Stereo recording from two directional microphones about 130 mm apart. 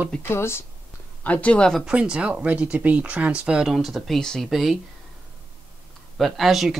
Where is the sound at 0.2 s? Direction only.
20° left (ahead or behind).